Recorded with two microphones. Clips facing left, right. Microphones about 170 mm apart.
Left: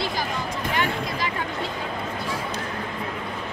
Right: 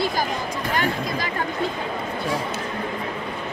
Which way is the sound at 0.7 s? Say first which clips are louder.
Right 3 dB; 40° right (ahead or behind).